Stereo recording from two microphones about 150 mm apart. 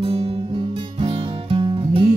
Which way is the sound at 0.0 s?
40° right (ahead or behind).